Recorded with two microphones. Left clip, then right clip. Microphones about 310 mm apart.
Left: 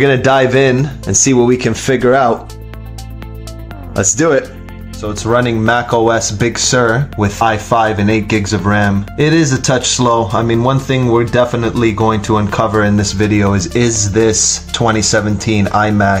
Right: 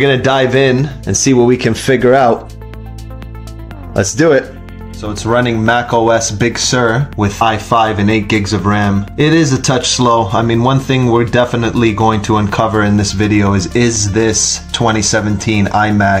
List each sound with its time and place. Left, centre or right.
0.0 s speech: centre
3.9 s speech: centre
5.0 s speech: centre